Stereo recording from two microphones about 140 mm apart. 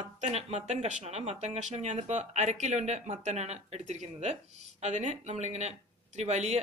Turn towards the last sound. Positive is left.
turn(degrees=-55)  # may be behind; listen again after turning